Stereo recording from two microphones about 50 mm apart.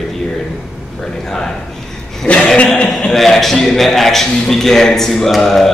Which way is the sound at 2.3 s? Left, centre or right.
Left.